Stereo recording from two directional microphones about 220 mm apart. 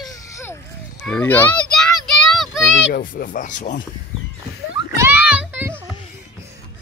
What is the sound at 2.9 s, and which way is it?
Speech, 40° left (ahead or behind).